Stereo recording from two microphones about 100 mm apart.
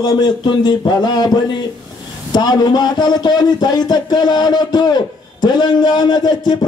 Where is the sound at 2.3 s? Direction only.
45° left (ahead or behind).